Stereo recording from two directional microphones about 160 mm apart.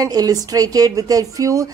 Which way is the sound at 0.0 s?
25° right (ahead or behind).